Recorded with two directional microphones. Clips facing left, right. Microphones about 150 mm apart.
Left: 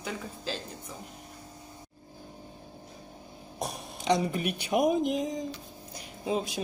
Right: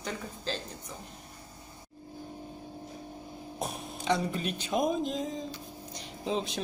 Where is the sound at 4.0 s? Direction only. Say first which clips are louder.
Left 3 dB; 15° left (ahead or behind).